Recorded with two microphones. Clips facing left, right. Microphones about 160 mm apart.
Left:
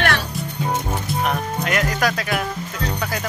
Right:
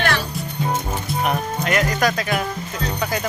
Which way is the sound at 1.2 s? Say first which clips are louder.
Right 2 dB; 5° right (ahead or behind).